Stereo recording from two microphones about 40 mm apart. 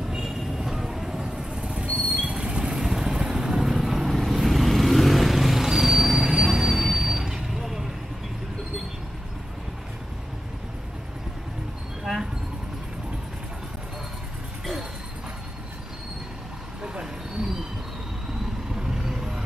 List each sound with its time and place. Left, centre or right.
0.0 s vehicle: centre
0.6 s mouse: centre; by 1.9 s right
2.0 s rodents: right
2.3 s vehicle: right
16.8 s vehicle: centre
18.8 s vehicle: centre